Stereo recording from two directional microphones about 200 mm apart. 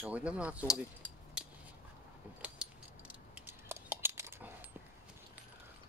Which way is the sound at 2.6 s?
5° right (ahead or behind).